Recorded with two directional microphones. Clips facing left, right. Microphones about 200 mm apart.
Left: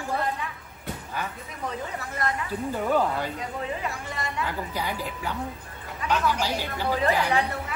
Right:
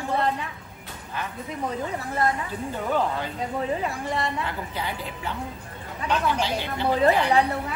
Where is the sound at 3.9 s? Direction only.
30° right (ahead or behind).